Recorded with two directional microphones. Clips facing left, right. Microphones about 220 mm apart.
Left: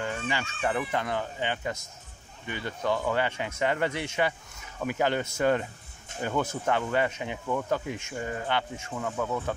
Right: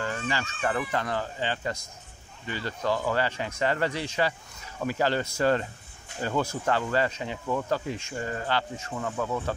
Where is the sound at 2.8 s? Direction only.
Centre (ahead or behind).